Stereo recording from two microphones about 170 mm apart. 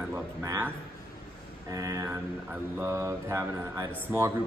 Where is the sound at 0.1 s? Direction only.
15° right (ahead or behind).